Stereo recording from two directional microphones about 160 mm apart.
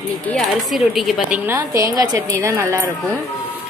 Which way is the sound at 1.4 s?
15° right (ahead or behind).